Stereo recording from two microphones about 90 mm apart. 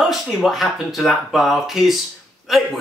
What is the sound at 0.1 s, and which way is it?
Speech, centre (ahead or behind).